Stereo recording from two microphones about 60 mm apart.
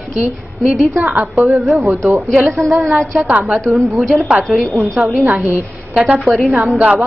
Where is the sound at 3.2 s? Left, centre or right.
Right.